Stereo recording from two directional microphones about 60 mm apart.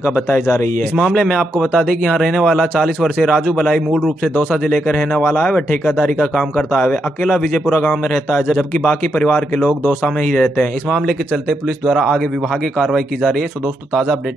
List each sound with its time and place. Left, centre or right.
1.2 s a man's voice: centre
3.2 s speech: centre
3.5 s a man's voice: centre
4.6 s speech: centre
6.1 s a man's voice: centre
10.0 s speech: centre
11.9 s a man's voice: centre